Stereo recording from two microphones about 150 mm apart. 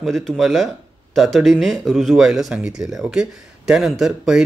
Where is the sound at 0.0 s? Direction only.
Centre (ahead or behind).